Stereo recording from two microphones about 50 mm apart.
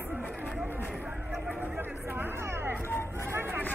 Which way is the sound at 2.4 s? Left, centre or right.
Right.